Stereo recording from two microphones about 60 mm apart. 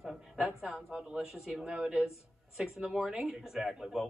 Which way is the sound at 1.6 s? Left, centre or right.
Centre.